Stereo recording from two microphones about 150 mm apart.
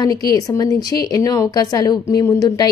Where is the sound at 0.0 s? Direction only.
25° left (ahead or behind).